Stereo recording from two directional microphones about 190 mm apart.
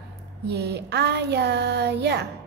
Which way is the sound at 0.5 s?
60° right (ahead or behind).